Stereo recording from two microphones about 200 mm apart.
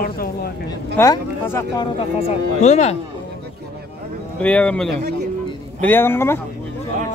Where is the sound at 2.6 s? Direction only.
35° left (ahead or behind).